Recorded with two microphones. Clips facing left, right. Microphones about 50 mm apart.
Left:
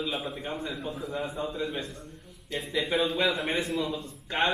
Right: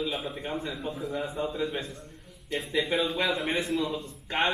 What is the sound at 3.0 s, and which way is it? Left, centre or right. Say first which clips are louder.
Speech: left 1 dB; centre.